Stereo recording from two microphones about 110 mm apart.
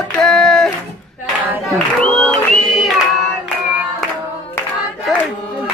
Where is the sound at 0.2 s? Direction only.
5° left (ahead or behind).